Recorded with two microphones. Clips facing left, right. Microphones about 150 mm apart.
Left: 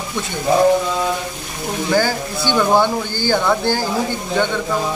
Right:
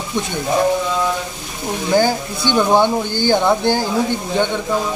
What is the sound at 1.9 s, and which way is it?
Speech, 20° right (ahead or behind).